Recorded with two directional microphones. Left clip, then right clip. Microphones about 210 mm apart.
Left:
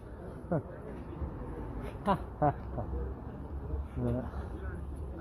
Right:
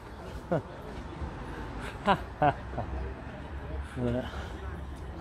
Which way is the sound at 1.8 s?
5° right (ahead or behind).